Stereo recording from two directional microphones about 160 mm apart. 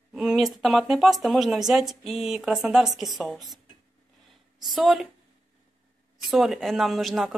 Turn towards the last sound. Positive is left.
turn(degrees=0)  # may be behind; listen again after turning